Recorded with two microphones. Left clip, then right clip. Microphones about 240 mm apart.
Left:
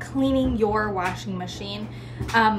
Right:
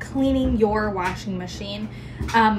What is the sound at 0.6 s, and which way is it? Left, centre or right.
A woman's voice, centre.